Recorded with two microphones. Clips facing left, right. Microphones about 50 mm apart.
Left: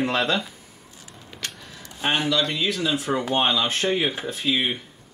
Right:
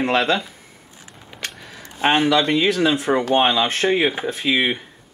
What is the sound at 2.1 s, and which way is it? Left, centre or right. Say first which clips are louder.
Speech: right 6 dB; right.